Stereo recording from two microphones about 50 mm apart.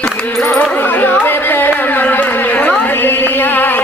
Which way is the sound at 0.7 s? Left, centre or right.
Left.